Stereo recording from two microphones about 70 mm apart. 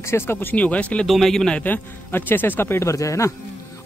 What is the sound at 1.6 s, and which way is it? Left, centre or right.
Speech, left.